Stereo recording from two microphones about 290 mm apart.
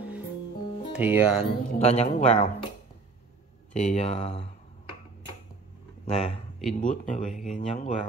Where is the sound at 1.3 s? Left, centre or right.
Left.